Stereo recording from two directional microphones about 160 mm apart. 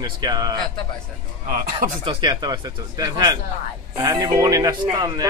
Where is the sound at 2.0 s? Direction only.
25° right (ahead or behind).